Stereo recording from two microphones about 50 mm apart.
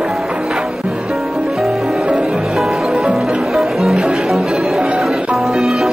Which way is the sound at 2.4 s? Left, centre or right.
Centre.